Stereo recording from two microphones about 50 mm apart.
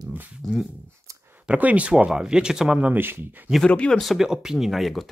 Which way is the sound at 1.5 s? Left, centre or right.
Right.